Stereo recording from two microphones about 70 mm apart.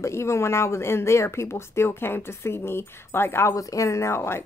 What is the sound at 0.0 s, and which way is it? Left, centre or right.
Speech, left.